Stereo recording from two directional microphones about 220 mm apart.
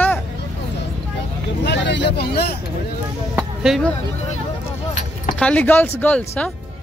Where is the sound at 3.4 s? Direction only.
Centre (ahead or behind).